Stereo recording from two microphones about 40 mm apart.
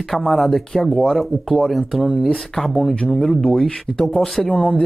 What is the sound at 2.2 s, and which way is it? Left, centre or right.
Speech, centre.